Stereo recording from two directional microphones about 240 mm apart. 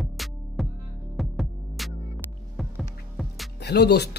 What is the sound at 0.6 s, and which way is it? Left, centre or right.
Music, centre.